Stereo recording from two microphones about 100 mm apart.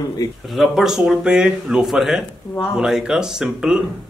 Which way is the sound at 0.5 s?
5° right (ahead or behind).